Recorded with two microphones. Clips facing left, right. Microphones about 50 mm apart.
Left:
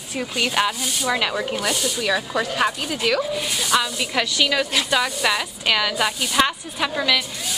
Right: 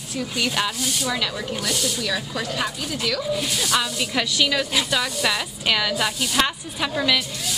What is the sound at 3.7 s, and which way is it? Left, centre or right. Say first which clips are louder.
A woman's voice: left 3 dB; centre.